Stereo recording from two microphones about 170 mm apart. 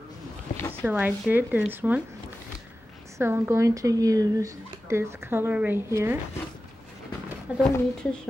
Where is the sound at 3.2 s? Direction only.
15° right (ahead or behind).